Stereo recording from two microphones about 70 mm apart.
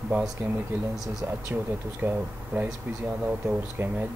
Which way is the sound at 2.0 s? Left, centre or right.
Right.